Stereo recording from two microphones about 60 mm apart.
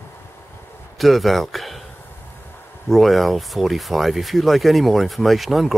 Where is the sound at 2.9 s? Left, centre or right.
Centre.